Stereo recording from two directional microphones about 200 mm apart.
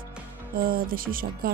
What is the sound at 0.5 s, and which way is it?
Speech, 45° right (ahead or behind).